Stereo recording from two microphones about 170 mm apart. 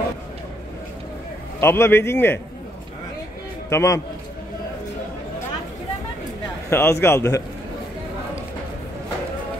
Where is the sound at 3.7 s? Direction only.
20° left (ahead or behind).